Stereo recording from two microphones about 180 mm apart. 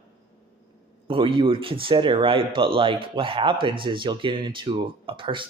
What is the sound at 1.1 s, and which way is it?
Speech, 30° right (ahead or behind).